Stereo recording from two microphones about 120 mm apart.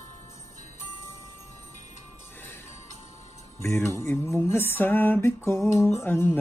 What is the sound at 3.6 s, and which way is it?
Music, 20° left (ahead or behind).